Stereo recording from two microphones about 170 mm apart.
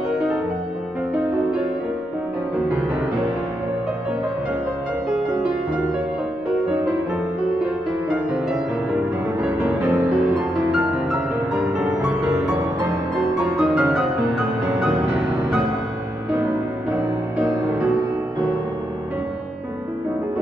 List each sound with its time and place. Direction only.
9.7 s music: 5° right (ahead or behind)
12.1 s music: 20° right (ahead or behind)
13.1 s music: centre (ahead or behind)